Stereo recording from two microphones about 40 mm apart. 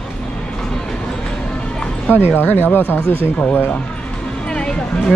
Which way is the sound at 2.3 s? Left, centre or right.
Left.